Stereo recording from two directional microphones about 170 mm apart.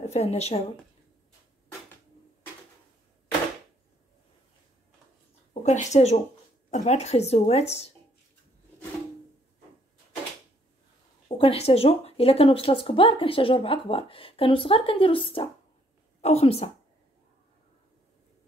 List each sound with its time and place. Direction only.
0.0 s a woman's voice: 40° left (ahead or behind)
5.5 s speech: 45° left (ahead or behind)
11.3 s speech: 35° left (ahead or behind)